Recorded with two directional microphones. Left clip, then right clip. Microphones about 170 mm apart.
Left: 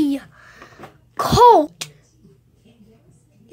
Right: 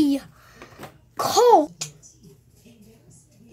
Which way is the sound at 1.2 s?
10° left (ahead or behind).